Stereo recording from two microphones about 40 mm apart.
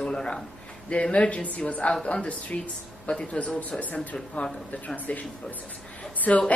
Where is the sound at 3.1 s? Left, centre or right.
Left.